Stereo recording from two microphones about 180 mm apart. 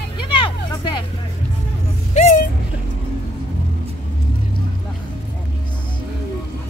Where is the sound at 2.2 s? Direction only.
40° left (ahead or behind).